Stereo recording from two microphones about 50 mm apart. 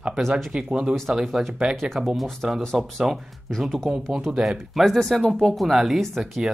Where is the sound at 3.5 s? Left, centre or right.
Centre.